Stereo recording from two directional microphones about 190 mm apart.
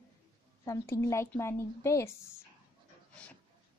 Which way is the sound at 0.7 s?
15° left (ahead or behind).